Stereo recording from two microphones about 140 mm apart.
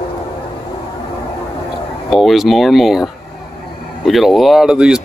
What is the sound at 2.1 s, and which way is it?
Speech, centre (ahead or behind).